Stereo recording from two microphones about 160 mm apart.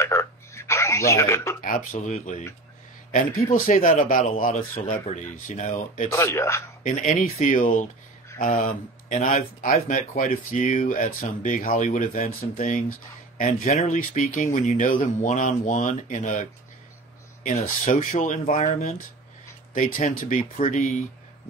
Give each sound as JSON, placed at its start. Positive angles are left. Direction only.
{"t": 0.0, "sound": "telephone", "side_deg": 15}
{"t": 1.6, "sound": "speech", "side_deg": 60}
{"t": 3.5, "sound": "a man's voice", "side_deg": 60}
{"t": 6.1, "sound": "speech", "side_deg": 15}
{"t": 6.8, "sound": "a man's voice", "side_deg": 55}